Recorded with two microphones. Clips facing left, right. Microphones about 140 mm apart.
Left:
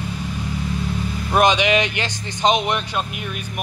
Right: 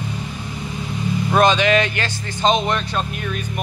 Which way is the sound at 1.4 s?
15° left (ahead or behind).